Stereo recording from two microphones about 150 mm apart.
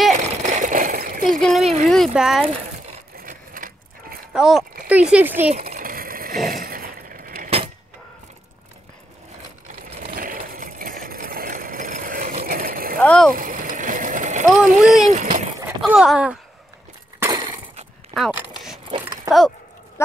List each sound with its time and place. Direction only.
0.1 s a sound: 60° right (ahead or behind)
1.4 s speech: centre (ahead or behind)
3.2 s sewing machine: 65° right (ahead or behind)
4.3 s speech: 5° right (ahead or behind)
5.7 s vehicle: 70° right (ahead or behind)
7.4 s vehicle: 40° right (ahead or behind)
9.8 s sewing machine: 45° right (ahead or behind)
10.1 s vehicle: 75° right (ahead or behind)
13.0 s speech: 5° left (ahead or behind)
13.3 s a sound: 65° right (ahead or behind)
14.5 s speech: 5° right (ahead or behind)
15.0 s a sound: 55° right (ahead or behind)
15.8 s speech: 5° right (ahead or behind)
18.1 s speech: 25° right (ahead or behind)